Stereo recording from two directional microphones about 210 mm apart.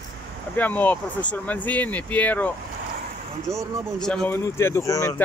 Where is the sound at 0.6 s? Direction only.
10° left (ahead or behind).